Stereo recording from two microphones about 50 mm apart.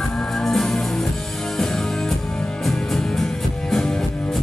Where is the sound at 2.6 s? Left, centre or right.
Centre.